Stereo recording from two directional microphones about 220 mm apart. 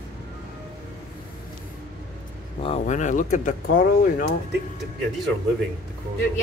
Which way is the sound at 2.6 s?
30° left (ahead or behind).